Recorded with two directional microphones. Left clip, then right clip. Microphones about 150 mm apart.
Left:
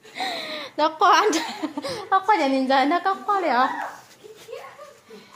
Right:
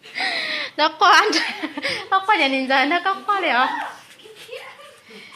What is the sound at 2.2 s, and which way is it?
Speech, centre (ahead or behind).